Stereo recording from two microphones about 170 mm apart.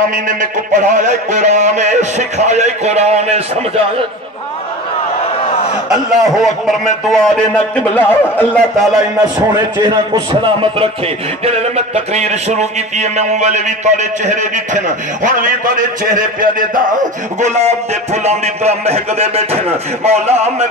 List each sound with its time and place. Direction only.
0.1 s a sound: 50° right (ahead or behind)
5.9 s a man's voice: centre (ahead or behind)
8.7 s a man's voice: centre (ahead or behind)
9.8 s a man's voice: 30° right (ahead or behind)
11.4 s a sound: 40° right (ahead or behind); by 16.8 s 55° right (ahead or behind)
17.4 s a man's voice: 40° right (ahead or behind)